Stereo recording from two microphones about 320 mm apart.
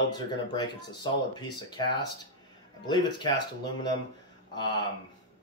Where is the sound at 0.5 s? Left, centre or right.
Centre.